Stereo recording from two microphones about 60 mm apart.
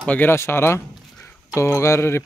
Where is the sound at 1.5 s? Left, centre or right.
Left.